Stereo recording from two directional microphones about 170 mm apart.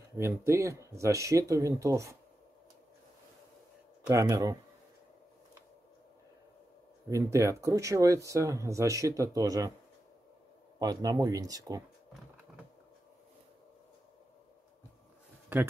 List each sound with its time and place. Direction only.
0.2 s speech: 15° right (ahead or behind)
4.1 s speech: 20° right (ahead or behind)
7.1 s speech: 15° right (ahead or behind)
10.8 s speech: 25° right (ahead or behind)
15.5 s speech: 10° right (ahead or behind)